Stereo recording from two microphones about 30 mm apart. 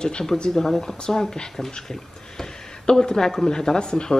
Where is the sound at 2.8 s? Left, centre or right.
Left.